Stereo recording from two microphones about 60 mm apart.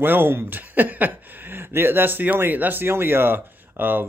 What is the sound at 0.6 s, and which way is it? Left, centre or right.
Speech, right.